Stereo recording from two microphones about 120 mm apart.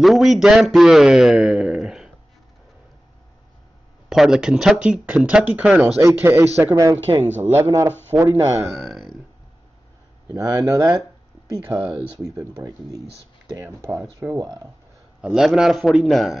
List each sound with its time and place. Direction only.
0.0 s a man's voice: centre (ahead or behind)
4.1 s speech: 5° right (ahead or behind)
5.9 s speech: 20° right (ahead or behind)
8.7 s speech: centre (ahead or behind)
10.3 s speech: 25° right (ahead or behind)
11.7 s speech: 15° right (ahead or behind)
12.2 s speech: 30° right (ahead or behind)
14.4 s speech: 35° right (ahead or behind)
15.2 s a man's voice: 5° right (ahead or behind)